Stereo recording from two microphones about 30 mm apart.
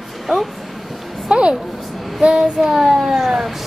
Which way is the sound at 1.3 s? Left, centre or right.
Right.